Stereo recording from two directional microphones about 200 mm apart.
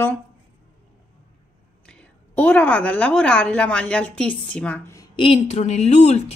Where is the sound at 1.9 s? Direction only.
5° left (ahead or behind).